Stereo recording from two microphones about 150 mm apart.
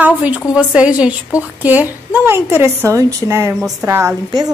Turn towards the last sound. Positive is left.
turn(degrees=-20)  # may be behind; listen again after turning